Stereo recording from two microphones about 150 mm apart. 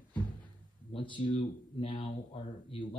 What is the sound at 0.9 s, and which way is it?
Speech, 35° left (ahead or behind).